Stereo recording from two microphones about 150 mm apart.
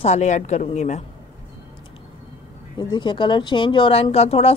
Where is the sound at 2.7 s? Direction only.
30° left (ahead or behind).